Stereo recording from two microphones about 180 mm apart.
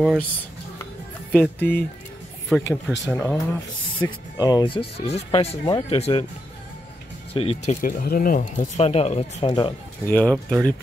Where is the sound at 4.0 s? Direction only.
20° left (ahead or behind).